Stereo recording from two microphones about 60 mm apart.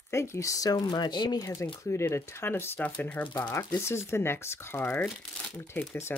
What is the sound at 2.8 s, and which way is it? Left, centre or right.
Speech, left.